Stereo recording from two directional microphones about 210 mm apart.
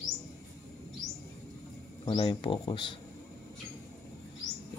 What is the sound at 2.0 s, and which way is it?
Speech, 20° left (ahead or behind).